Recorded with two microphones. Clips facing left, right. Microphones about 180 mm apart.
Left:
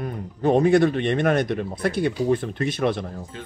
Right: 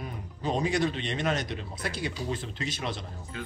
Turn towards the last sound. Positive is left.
turn(degrees=60)  # may be behind; listen again after turning